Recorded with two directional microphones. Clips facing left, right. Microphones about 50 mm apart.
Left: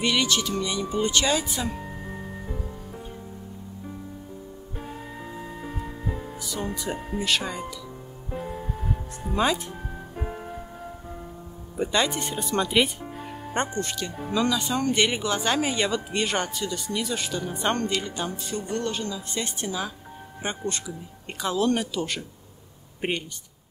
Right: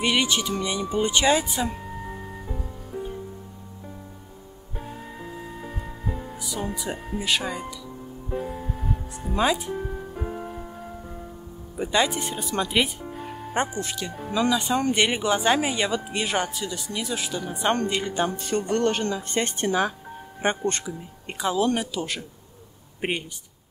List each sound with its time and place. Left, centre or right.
0.0 s speech: centre
1.7 s music: centre
4.8 s music: centre
10.1 s music: centre
11.7 s speech: centre
14.4 s speech: centre
17.8 s speech: right
18.3 s speech: right
21.3 s speech: centre